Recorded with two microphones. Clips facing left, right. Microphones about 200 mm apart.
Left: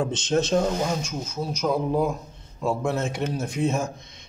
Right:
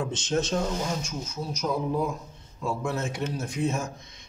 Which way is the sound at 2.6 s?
65° left (ahead or behind).